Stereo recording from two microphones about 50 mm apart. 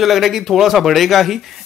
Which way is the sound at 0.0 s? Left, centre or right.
Centre.